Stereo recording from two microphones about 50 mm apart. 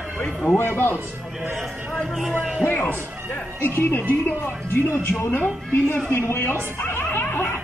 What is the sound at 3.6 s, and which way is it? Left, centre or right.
A woman's voice, left.